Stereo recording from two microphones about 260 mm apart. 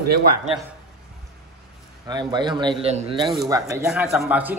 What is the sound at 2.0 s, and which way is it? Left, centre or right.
Speech, centre.